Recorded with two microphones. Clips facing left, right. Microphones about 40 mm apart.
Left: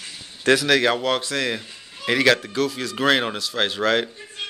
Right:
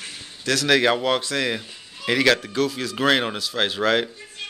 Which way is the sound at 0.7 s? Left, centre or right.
Centre.